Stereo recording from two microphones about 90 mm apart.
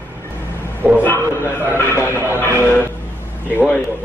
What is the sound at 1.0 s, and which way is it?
A man's voice, 20° left (ahead or behind).